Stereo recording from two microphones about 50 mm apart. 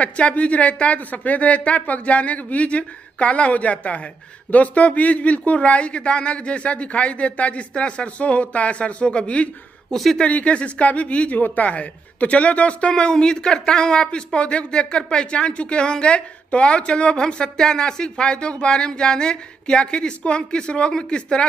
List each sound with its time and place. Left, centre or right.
0.0 s speech: left